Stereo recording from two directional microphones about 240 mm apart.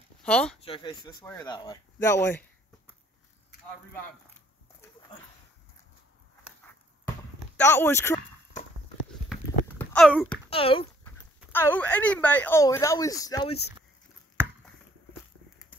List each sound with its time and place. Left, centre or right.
0.2 s speech: centre
0.6 s speech: left
7.5 s speech: centre
9.3 s a sound: centre
10.5 s speech: left
11.1 s speech: centre